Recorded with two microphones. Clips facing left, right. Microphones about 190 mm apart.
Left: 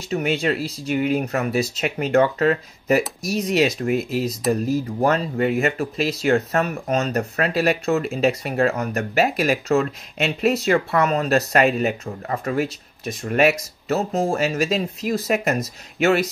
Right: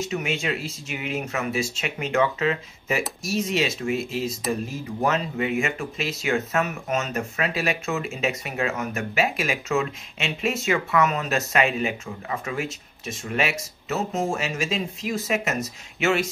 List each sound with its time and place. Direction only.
0.0 s speech: 35° left (ahead or behind)